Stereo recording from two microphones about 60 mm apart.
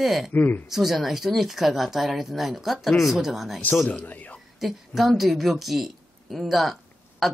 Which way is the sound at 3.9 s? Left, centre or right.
Left.